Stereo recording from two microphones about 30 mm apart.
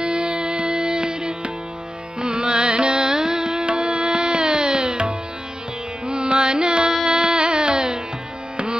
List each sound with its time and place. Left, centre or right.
0.0 s music: right
2.1 s carnatic music: right